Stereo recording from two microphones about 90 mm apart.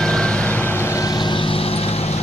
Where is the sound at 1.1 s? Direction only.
60° left (ahead or behind); by 1.8 s 90° left.